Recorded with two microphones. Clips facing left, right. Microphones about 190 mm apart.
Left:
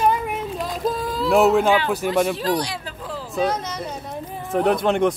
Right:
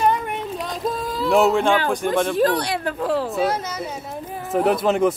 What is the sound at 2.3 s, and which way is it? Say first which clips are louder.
Speech: right 4 dB; 55° right (ahead or behind).